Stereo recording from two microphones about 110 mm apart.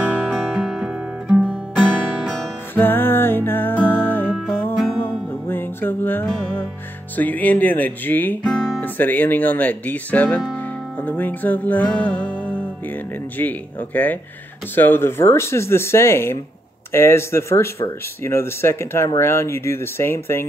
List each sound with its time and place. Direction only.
0.1 s music: 15° right (ahead or behind)
2.7 s music: 20° left (ahead or behind)
5.5 s music: 20° left (ahead or behind)
7.2 s speech: 15° left (ahead or behind)
10.5 s music: 15° left (ahead or behind)
14.8 s speech: 20° left (ahead or behind)